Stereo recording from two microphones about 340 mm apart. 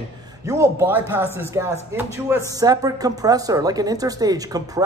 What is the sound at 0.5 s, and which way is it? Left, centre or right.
A man's voice, centre.